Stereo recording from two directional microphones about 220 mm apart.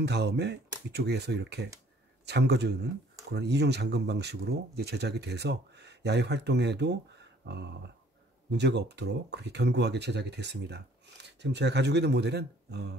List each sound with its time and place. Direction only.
0.0 s speech: 50° right (ahead or behind)